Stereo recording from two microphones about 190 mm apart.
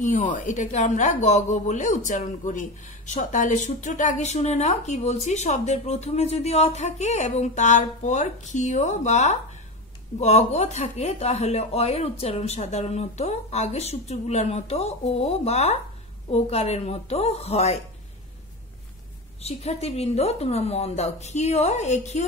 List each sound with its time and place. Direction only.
0.0 s speech: 40° left (ahead or behind)
19.4 s speech: 35° left (ahead or behind)